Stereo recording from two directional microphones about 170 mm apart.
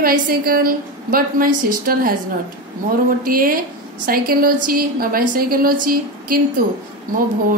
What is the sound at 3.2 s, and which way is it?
A woman's voice, 55° right (ahead or behind).